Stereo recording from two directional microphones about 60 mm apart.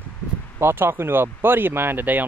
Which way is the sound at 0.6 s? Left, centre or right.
Right.